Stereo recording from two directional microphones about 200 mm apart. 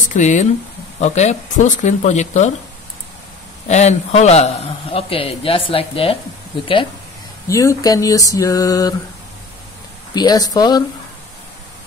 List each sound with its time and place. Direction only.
0.0 s speech: 40° left (ahead or behind)
3.6 s a man's voice: 35° left (ahead or behind)
7.4 s a sound: 15° left (ahead or behind)
10.1 s a man's voice: 20° left (ahead or behind)